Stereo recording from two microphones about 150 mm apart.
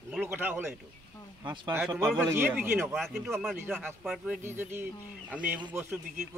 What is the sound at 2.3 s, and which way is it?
Speech, 15° right (ahead or behind).